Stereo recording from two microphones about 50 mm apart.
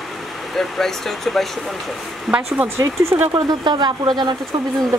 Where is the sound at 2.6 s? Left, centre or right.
Right.